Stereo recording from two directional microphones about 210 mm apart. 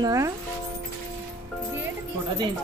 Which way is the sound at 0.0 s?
15° right (ahead or behind).